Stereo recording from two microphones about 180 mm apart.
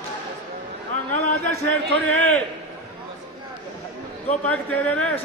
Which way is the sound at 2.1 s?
5° left (ahead or behind).